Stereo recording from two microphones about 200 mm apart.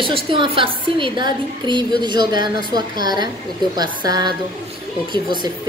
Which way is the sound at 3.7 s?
20° right (ahead or behind).